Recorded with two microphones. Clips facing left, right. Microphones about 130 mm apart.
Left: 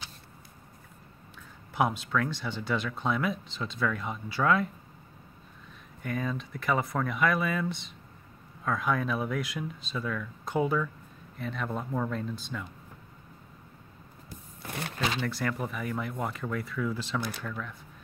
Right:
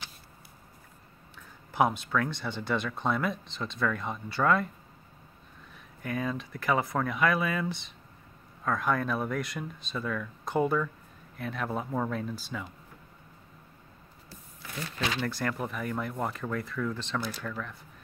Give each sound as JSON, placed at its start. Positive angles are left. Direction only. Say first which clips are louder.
{"t": 1.7, "sound": "speech", "louder": "right 1 dB", "side_deg": 0}
{"t": 6.0, "sound": "speech", "louder": "even", "side_deg": 0}
{"t": 14.6, "sound": "a sound", "louder": "left 2 dB", "side_deg": 60}
{"t": 15.1, "sound": "speech", "louder": "even", "side_deg": 0}